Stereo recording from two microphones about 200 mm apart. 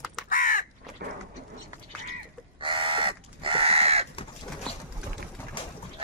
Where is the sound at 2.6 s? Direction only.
25° right (ahead or behind).